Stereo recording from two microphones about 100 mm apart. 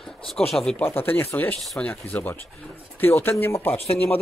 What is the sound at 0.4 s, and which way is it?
Speech, 80° left.